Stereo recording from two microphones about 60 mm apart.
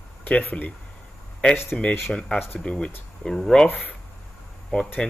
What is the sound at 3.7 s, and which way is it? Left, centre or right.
Speech, left.